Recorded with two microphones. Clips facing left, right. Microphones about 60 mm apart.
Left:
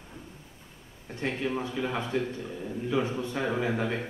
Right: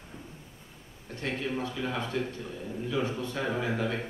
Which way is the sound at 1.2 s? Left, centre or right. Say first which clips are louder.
Left 2 dB; left.